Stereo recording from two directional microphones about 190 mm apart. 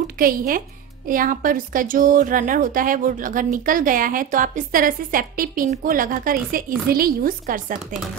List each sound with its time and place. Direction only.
0.0 s a woman's voice: 50° right (ahead or behind)